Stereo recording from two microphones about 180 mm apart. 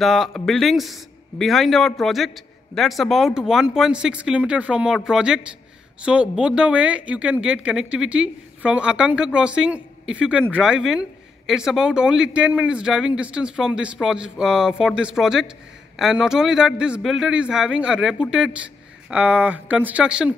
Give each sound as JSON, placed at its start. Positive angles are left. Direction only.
{"t": 0.0, "sound": "speech", "side_deg": 0}